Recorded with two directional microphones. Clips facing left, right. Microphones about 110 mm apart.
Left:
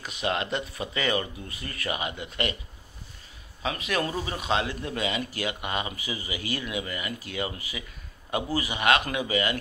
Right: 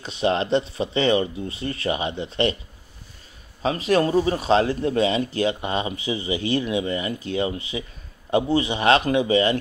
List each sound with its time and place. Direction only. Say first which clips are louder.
0.0 s speech: right 7 dB; 30° right (ahead or behind)
3.6 s speech: right 9 dB; 35° right (ahead or behind)